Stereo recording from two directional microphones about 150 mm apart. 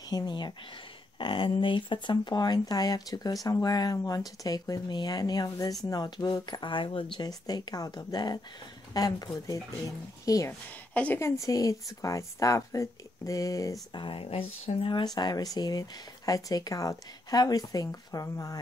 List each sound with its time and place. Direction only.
0.1 s speech: 30° left (ahead or behind)
10.9 s speech: 10° left (ahead or behind)
14.0 s speech: 40° left (ahead or behind)